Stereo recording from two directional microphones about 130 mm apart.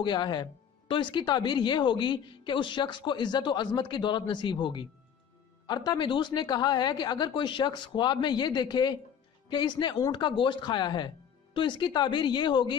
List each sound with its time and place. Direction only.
0.0 s speech: 35° left (ahead or behind)